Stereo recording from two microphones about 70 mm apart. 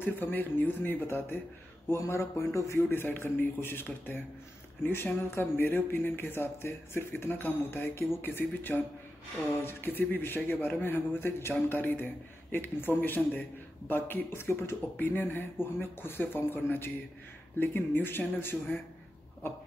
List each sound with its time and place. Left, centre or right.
0.0 s speech: left
2.0 s speech: left
2.9 s speech: left